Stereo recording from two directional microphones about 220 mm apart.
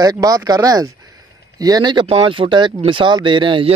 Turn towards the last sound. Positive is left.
turn(degrees=-20)  # may be behind; listen again after turning